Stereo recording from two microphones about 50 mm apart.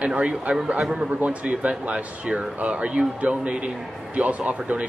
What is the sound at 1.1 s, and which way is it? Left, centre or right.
Speech, right.